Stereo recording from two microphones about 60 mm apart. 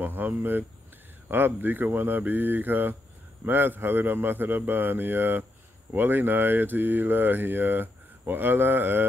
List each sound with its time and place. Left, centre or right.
0.0 s speech: right